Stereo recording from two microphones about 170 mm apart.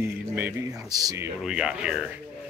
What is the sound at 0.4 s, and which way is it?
Speech, 15° right (ahead or behind).